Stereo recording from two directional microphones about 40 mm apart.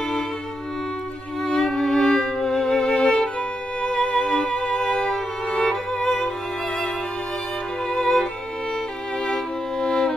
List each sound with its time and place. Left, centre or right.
1.4 s music: centre
7.9 s music: centre